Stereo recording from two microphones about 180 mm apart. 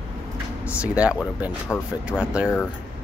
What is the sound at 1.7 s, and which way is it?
Speech, 10° left (ahead or behind).